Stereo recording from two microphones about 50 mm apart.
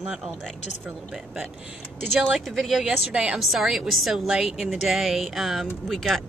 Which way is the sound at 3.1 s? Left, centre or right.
Right.